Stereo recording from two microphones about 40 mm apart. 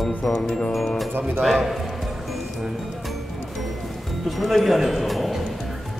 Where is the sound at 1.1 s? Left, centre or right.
Right.